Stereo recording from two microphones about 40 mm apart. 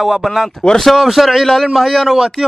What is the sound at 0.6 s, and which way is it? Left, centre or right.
Speech, left.